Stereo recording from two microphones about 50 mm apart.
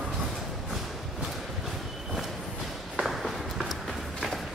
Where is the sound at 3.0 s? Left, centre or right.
Centre.